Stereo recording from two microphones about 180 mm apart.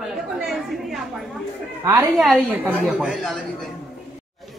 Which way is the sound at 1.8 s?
15° right (ahead or behind).